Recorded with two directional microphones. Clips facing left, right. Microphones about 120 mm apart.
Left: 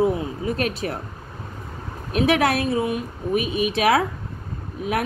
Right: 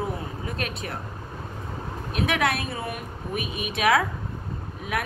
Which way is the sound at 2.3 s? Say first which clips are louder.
Left 6 dB; 35° left (ahead or behind).